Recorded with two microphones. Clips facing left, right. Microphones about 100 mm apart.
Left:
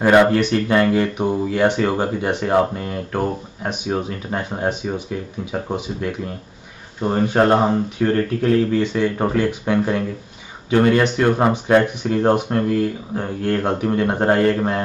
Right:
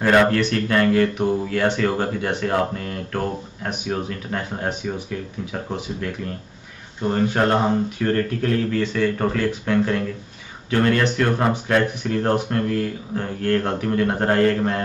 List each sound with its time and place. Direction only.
0.0 s speech: 15° left (ahead or behind)
7.0 s speech: 20° left (ahead or behind)